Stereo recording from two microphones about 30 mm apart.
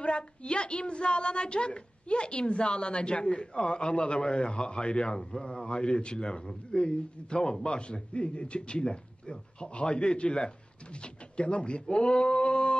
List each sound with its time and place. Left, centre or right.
0.0 s speech: left